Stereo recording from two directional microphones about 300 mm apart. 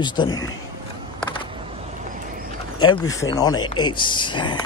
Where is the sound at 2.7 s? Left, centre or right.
Centre.